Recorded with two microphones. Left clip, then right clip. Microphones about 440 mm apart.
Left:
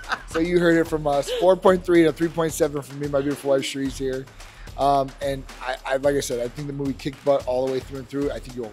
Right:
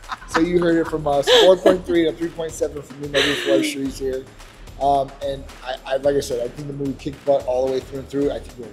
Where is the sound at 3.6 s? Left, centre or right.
Left.